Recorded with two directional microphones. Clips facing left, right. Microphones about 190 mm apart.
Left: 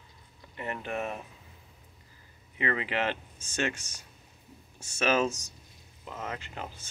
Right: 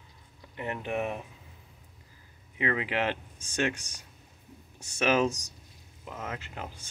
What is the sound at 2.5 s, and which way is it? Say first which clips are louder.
Speech: right 1 dB; 10° right (ahead or behind).